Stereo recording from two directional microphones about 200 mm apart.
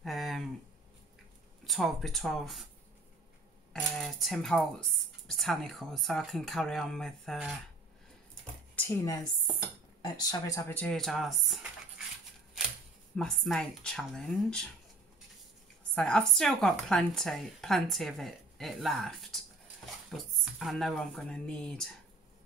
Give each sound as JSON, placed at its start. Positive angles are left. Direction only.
{"t": 0.0, "sound": "a sound", "side_deg": 0}
{"t": 1.7, "sound": "a woman's voice", "side_deg": 0}
{"t": 4.0, "sound": "a woman's voice", "side_deg": 0}
{"t": 8.7, "sound": "a woman's voice", "side_deg": 15}
{"t": 13.1, "sound": "a woman's voice", "side_deg": 0}
{"t": 15.9, "sound": "a woman's voice", "side_deg": 5}